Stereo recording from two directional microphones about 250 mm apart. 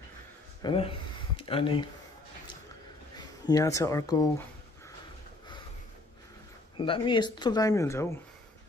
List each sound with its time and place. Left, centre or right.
0.6 s a sound: centre
3.4 s speech: centre
6.8 s speech: centre